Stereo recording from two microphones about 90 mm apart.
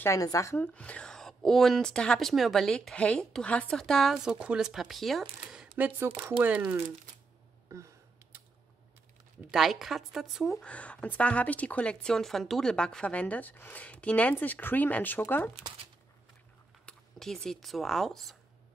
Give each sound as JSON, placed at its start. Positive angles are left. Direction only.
{"t": 0.2, "sound": "speech", "side_deg": 35}
{"t": 0.6, "sound": "a woman's voice", "side_deg": 15}
{"t": 5.8, "sound": "speech", "side_deg": -20}
{"t": 9.5, "sound": "a woman's voice", "side_deg": 0}
{"t": 10.6, "sound": "speech", "side_deg": 15}
{"t": 16.8, "sound": "speech", "side_deg": 5}